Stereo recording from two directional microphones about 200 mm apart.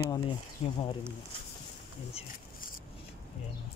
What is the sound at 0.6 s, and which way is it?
Speech, 30° left (ahead or behind).